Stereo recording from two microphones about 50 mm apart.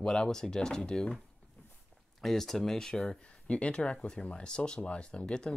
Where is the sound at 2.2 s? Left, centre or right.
Centre.